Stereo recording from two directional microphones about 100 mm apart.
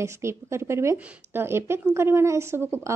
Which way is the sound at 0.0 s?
30° right (ahead or behind).